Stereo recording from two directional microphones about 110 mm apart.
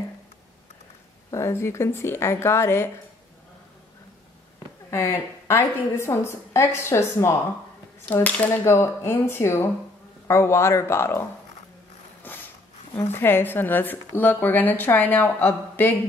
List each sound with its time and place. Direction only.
1.3 s a woman's voice: 25° left (ahead or behind)
4.9 s a woman's voice: 25° left (ahead or behind)
8.1 s a woman's voice: 15° left (ahead or behind)
12.2 s mechanisms: 15° left (ahead or behind)
13.1 s speech: 20° left (ahead or behind)